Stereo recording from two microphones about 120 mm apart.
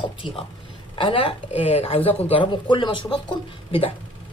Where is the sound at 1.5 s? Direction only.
60° left (ahead or behind); by 3.1 s 40° left (ahead or behind).